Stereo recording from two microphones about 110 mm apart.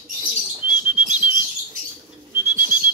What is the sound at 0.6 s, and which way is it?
Bird, 15° right (ahead or behind).